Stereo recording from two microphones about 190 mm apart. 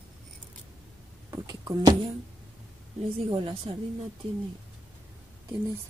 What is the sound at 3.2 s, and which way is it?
Speech, 30° right (ahead or behind).